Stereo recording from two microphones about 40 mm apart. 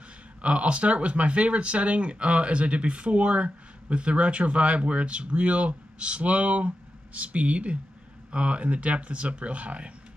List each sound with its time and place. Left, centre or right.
0.4 s speech: right